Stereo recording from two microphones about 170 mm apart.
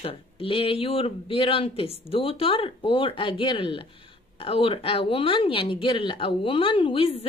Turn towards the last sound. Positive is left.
turn(degrees=35)  # may be behind; listen again after turning